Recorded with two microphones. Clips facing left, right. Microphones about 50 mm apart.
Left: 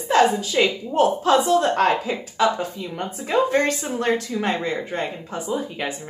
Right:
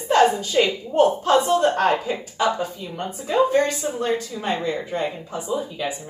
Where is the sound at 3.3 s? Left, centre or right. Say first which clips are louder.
Right 1 dB; left.